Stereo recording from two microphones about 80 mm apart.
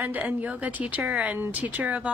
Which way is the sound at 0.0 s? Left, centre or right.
Right.